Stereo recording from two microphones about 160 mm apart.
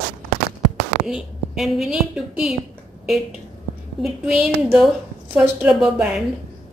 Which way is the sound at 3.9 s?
Centre (ahead or behind).